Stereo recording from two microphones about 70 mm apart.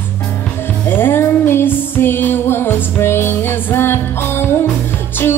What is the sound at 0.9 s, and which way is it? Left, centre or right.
Music, left.